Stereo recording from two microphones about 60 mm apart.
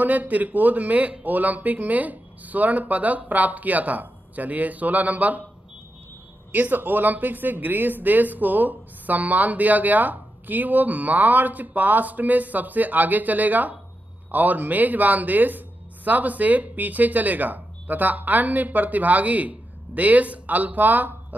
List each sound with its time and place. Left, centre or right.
0.0 s speech: right
6.5 s speech: right